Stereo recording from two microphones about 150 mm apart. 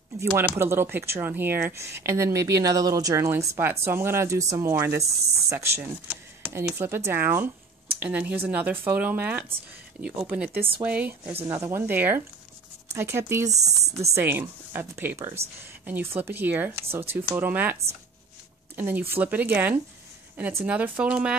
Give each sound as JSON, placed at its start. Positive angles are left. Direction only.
{"t": 0.2, "sound": "speech", "side_deg": -15}
{"t": 13.5, "sound": "speech", "side_deg": -45}
{"t": 14.1, "sound": "speech", "side_deg": -15}
{"t": 18.8, "sound": "speech", "side_deg": -15}